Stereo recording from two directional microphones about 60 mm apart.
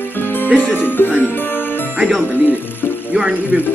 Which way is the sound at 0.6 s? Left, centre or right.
Left.